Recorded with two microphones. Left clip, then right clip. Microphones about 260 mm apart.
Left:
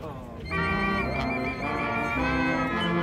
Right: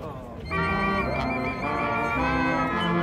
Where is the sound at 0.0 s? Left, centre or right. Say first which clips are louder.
Right 1 dB; centre.